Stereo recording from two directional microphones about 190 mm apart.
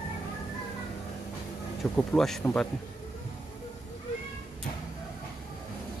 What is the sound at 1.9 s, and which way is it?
Speech, centre (ahead or behind).